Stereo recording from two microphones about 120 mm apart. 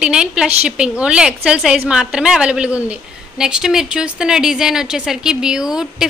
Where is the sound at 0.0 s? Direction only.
5° right (ahead or behind).